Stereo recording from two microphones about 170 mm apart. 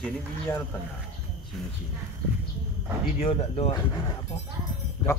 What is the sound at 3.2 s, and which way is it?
Speech, 35° left (ahead or behind).